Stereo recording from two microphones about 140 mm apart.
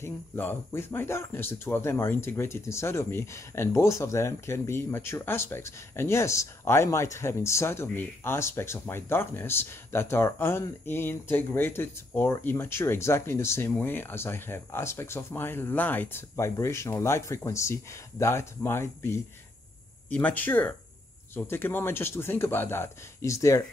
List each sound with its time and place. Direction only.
0.0 s speech: 15° left (ahead or behind)